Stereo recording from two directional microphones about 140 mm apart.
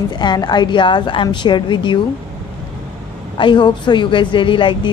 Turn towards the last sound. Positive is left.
turn(degrees=35)  # may be behind; listen again after turning